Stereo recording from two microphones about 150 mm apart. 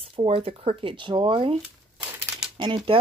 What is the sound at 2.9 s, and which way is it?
Speech, 40° right (ahead or behind).